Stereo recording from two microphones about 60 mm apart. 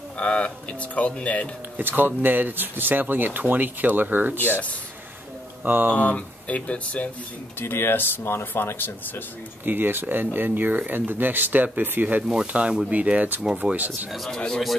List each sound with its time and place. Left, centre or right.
0.2 s speech: centre
1.8 s speech: right
4.4 s speech: left
5.7 s speech: right
5.9 s speech: left
7.6 s speech: left
9.7 s speech: right
12.2 s speech: centre
14.1 s speech: centre